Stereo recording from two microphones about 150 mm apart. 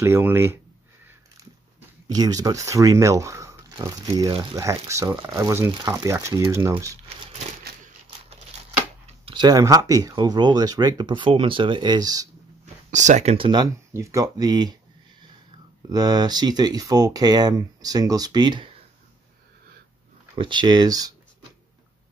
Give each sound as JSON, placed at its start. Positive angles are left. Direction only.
{"t": 0.0, "sound": "speech", "side_deg": -15}
{"t": 2.0, "sound": "speech", "side_deg": -25}
{"t": 9.0, "sound": "speech", "side_deg": -35}
{"t": 12.9, "sound": "speech", "side_deg": -50}
{"t": 13.5, "sound": "speech", "side_deg": -25}
{"t": 15.9, "sound": "speech", "side_deg": -25}
{"t": 20.3, "sound": "speech", "side_deg": -30}